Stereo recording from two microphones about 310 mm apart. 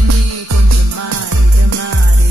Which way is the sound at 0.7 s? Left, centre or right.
Right.